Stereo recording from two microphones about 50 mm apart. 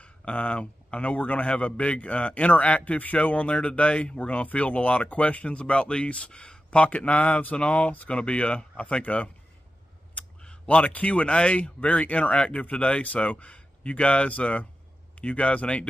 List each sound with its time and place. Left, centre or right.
0.0 s a man's voice: left
10.4 s a sound: centre
10.8 s a man's voice: left